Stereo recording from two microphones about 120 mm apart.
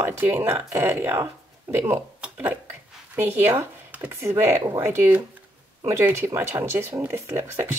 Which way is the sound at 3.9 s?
20° right (ahead or behind).